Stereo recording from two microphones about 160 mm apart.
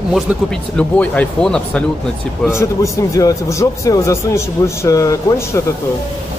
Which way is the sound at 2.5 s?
15° left (ahead or behind).